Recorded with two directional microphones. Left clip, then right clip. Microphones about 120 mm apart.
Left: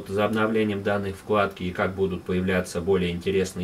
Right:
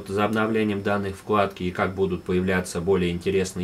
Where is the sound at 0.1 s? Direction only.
25° right (ahead or behind).